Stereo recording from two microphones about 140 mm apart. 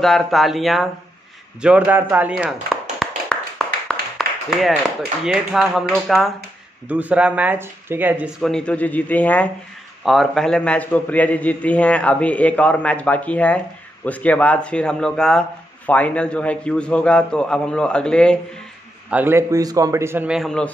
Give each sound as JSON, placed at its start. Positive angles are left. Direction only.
{"t": 0.0, "sound": "speech", "side_deg": 0}
{"t": 2.3, "sound": "chopping", "side_deg": -5}
{"t": 3.3, "sound": "clapping", "side_deg": 5}
{"t": 4.5, "sound": "speech", "side_deg": 0}
{"t": 6.9, "sound": "speech", "side_deg": -10}
{"t": 8.4, "sound": "a man's voice", "side_deg": 5}
{"t": 10.0, "sound": "a man's voice", "side_deg": 0}
{"t": 19.0, "sound": "a man's voice", "side_deg": -15}
{"t": 20.2, "sound": "speech", "side_deg": 0}